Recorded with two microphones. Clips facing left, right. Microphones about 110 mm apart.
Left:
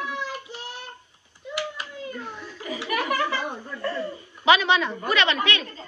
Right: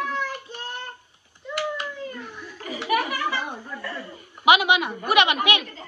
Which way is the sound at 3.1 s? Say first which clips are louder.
Left 2 dB; 55° left (ahead or behind).